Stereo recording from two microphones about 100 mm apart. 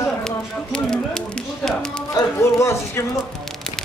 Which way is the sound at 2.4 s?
30° left (ahead or behind).